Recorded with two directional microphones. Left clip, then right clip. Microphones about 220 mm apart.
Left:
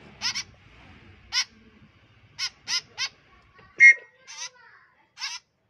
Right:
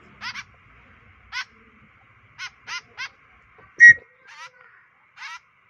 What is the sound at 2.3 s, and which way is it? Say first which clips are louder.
Crow: left 4 dB; 5° right (ahead or behind).